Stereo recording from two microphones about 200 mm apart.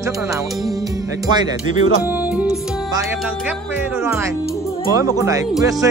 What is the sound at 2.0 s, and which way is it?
Music, 5° right (ahead or behind).